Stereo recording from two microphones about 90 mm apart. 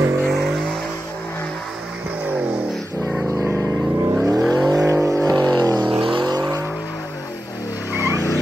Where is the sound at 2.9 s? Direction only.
30° right (ahead or behind).